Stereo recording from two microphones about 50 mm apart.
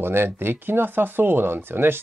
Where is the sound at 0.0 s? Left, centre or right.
Right.